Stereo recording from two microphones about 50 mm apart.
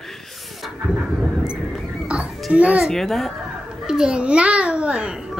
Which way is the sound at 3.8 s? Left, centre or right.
Centre.